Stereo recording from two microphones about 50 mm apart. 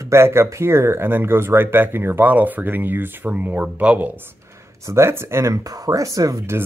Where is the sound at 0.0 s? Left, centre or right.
Right.